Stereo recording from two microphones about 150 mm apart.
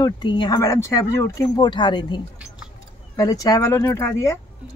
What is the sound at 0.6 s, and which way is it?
Speech, 20° left (ahead or behind).